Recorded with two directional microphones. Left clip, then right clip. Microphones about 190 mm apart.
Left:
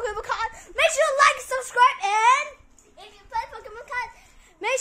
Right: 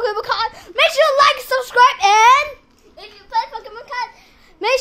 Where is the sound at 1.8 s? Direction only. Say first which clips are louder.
Right 6 dB; 40° right (ahead or behind).